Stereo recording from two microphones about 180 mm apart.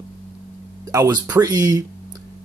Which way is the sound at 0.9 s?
20° right (ahead or behind).